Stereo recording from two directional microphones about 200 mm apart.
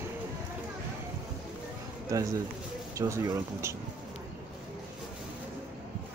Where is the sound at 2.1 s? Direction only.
15° right (ahead or behind).